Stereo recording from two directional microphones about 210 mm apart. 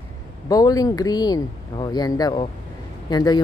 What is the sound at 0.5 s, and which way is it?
Speech, 15° left (ahead or behind).